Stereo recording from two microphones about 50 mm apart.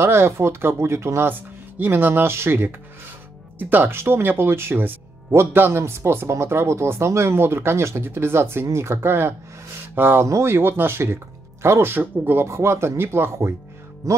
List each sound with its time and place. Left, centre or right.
0.0 s speech: right
1.8 s speech: right
3.5 s speech: right
3.9 s speech: right
8.6 s speech: right
10.2 s speech: right
10.5 s speech: right
11.9 s speech: right
12.4 s speech: right
14.0 s music: right